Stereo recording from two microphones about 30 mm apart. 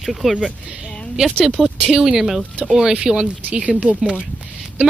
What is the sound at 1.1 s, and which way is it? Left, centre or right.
Speech, centre.